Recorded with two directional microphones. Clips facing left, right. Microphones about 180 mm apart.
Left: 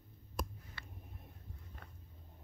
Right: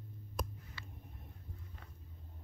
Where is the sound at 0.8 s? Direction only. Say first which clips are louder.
Even; 55° left (ahead or behind).